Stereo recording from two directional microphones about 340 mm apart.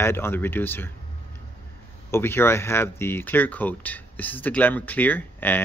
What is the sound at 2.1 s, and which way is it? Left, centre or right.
Speech, centre.